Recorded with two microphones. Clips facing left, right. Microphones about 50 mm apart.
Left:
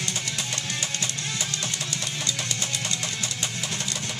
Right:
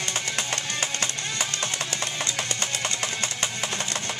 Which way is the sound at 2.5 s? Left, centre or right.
Right.